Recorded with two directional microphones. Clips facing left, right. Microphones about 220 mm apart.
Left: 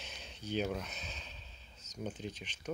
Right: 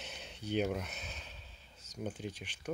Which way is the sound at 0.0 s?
15° right (ahead or behind).